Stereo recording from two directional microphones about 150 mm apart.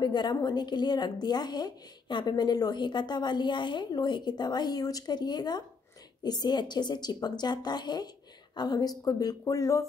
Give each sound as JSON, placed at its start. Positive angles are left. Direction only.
{"t": 0.0, "sound": "a woman's voice", "side_deg": 30}